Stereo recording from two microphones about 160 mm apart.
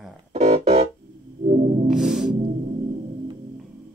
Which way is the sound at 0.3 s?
45° right (ahead or behind).